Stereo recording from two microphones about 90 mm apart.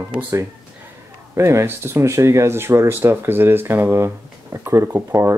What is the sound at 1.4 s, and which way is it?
Speech, 30° right (ahead or behind).